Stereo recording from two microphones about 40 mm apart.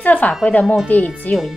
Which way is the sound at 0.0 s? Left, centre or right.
Left.